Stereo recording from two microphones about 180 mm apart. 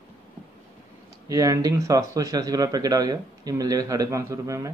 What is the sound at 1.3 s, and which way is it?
Speech, 20° right (ahead or behind).